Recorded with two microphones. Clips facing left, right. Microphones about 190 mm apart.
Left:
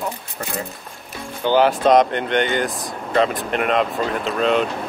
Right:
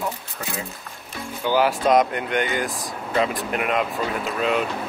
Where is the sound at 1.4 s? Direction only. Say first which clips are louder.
Left 4 dB; 30° left (ahead or behind).